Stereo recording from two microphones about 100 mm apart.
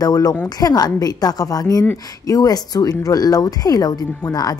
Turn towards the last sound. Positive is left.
turn(degrees=40)  # may be behind; listen again after turning